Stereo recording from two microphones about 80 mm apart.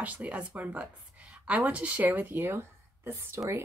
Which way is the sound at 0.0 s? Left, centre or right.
Centre.